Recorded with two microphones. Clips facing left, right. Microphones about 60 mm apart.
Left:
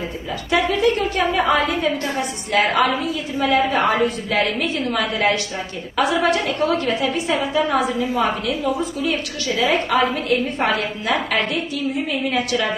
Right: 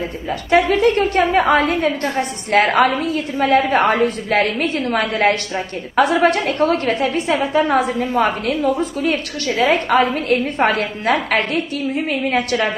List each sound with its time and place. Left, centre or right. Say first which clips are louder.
0.5 s a woman's voice: right 4 dB; right
9.0 s a woman's voice: right 3 dB; right